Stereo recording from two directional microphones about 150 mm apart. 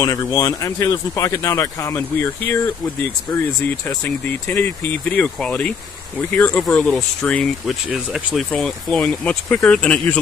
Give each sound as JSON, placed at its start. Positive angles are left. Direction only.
{"t": 0.0, "sound": "speech", "side_deg": 25}